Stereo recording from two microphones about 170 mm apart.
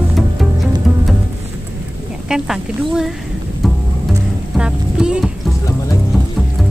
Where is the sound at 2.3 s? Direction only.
5° right (ahead or behind).